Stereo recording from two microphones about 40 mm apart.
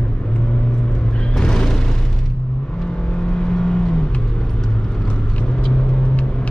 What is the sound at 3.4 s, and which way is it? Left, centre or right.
Vehicle, centre.